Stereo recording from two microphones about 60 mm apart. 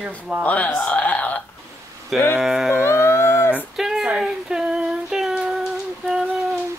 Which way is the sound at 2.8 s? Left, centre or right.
Left.